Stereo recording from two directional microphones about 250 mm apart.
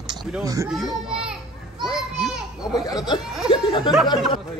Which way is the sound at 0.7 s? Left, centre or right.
Centre.